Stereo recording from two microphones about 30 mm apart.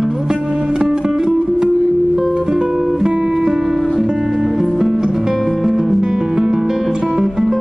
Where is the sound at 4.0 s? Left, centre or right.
Centre.